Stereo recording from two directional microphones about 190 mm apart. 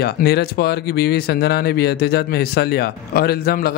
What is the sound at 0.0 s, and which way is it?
Speech, 55° left (ahead or behind).